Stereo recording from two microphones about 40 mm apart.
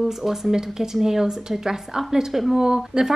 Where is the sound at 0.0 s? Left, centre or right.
Centre.